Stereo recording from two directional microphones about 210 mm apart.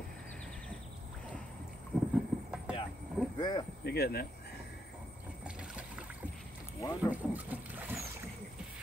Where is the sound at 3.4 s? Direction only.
20° left (ahead or behind).